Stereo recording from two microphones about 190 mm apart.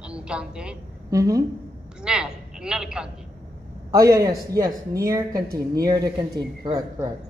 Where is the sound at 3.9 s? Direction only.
15° right (ahead or behind).